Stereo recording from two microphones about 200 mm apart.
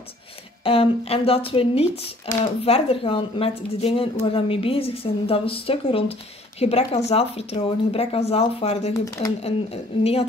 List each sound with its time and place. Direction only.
0.7 s speech: 30° left (ahead or behind)
8.9 s speech: 15° left (ahead or behind)
9.4 s speech: 30° left (ahead or behind)